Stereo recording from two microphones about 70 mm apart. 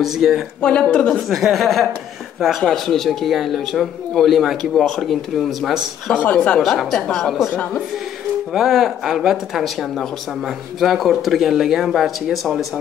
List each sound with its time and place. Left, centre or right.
0.0 s speech: centre
0.6 s a woman's voice: centre
1.3 s speech: centre
6.1 s a woman's voice: centre
6.6 s speech: centre
8.5 s speech: centre